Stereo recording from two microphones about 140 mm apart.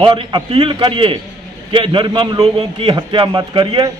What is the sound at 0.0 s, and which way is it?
A man's voice, 35° right (ahead or behind).